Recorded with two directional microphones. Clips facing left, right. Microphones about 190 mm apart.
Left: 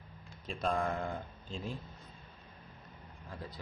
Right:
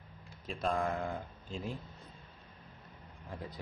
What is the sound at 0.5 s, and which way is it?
Speech, centre (ahead or behind).